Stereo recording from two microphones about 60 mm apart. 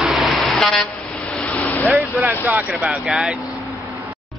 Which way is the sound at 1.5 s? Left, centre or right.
Left.